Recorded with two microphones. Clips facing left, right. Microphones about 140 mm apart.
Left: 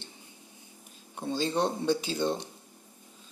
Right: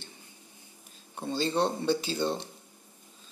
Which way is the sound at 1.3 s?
10° left (ahead or behind).